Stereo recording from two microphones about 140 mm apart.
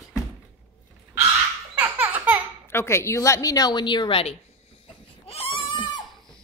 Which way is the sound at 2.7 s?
20° left (ahead or behind).